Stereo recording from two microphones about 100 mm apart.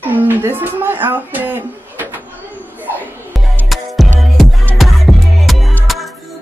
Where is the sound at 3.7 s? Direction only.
Centre (ahead or behind).